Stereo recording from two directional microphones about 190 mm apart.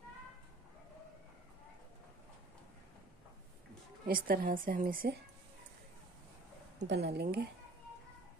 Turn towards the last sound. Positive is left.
turn(degrees=-55)  # may be behind; listen again after turning